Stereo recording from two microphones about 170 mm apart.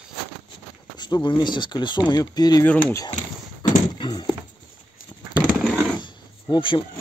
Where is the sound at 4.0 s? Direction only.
25° left (ahead or behind).